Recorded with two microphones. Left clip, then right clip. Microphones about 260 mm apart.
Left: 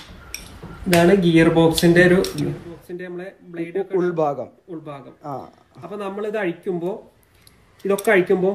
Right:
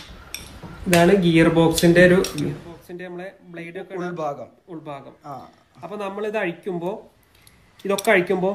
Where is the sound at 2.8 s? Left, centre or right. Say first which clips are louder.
Left 2 dB; right.